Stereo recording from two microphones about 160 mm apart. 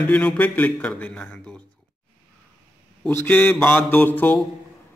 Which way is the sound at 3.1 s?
10° left (ahead or behind).